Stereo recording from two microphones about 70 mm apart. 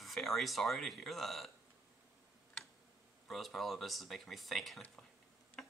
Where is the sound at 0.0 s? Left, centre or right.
Centre.